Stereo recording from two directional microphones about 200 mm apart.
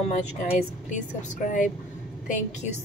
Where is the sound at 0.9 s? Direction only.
40° left (ahead or behind).